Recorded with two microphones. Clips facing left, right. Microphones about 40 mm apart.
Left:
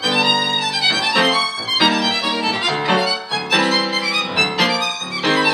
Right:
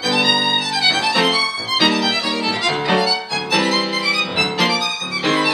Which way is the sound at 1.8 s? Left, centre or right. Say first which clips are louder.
Even; left.